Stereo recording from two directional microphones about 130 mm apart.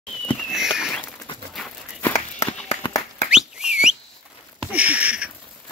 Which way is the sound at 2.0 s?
15° left (ahead or behind).